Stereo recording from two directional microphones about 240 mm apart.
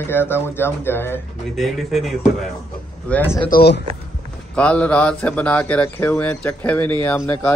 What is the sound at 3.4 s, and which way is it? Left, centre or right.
Speech, left.